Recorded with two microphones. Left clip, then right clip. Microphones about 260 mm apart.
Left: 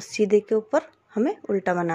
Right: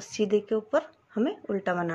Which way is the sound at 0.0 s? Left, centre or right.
Left.